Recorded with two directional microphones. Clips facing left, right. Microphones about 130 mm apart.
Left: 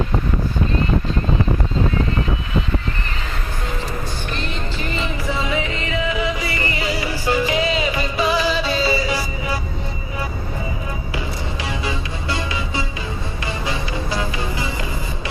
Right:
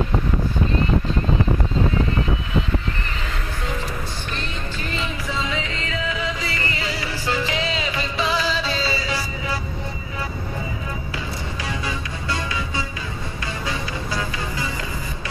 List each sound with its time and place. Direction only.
5.0 s music: 55° left (ahead or behind)
5.5 s music: 10° left (ahead or behind)
11.8 s music: 20° left (ahead or behind)